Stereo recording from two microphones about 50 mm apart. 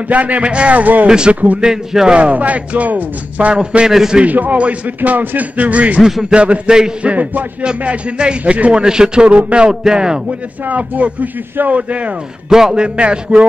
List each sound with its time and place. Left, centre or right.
0.1 s speech: right
1.0 s speech: centre
1.6 s speech: centre
2.1 s speech: right
3.9 s speech: centre
4.2 s speech: right
8.8 s speech: centre
10.6 s speech: right
12.4 s speech: centre
12.8 s speech: right